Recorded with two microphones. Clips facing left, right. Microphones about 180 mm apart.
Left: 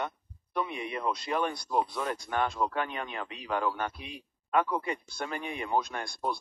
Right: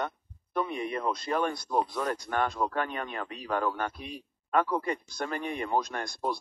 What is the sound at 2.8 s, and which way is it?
Speech, 45° right (ahead or behind).